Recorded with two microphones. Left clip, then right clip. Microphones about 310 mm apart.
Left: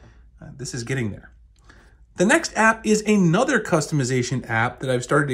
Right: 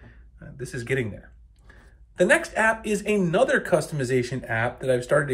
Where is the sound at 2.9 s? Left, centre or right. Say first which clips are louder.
Left 4 dB; centre.